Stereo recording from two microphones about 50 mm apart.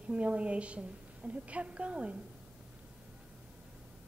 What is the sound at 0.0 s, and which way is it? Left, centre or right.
A woman's voice, right.